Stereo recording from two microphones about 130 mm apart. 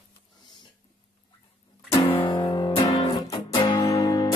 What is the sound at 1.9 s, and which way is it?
Music, 35° left (ahead or behind).